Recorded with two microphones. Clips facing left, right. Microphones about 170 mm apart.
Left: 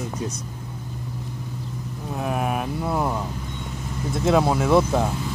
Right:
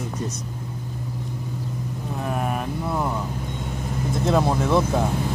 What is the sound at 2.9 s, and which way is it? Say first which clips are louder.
Speech: left 2 dB; 10° left (ahead or behind).